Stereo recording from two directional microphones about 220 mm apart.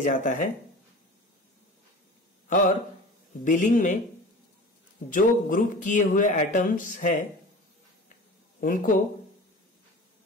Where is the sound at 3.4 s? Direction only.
35° left (ahead or behind).